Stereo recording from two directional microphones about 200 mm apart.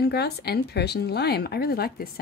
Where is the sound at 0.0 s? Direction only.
55° left (ahead or behind).